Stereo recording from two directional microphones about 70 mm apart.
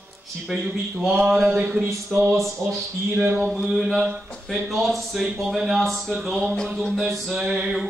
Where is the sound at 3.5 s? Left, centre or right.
Centre.